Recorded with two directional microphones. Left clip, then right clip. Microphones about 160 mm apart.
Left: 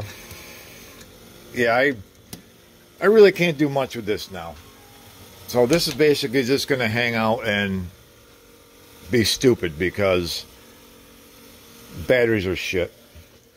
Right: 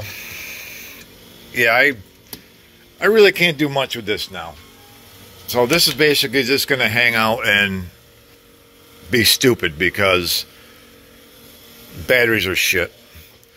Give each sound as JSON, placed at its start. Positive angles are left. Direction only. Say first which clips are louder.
{"t": 0.2, "sound": "a sound", "louder": "right 9 dB", "side_deg": 20}
{"t": 1.5, "sound": "speech", "louder": "right 5 dB", "side_deg": 25}
{"t": 3.0, "sound": "a man's voice", "louder": "right 2 dB", "side_deg": 25}
{"t": 5.5, "sound": "speech", "louder": "right 3 dB", "side_deg": 15}
{"t": 9.1, "sound": "speech", "louder": "right 4 dB", "side_deg": 10}
{"t": 12.1, "sound": "speech", "louder": "right 4 dB", "side_deg": 15}